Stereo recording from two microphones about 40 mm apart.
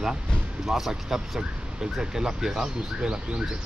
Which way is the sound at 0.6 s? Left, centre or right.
Centre.